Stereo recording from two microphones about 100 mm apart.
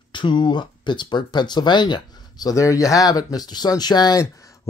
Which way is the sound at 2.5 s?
35° left (ahead or behind).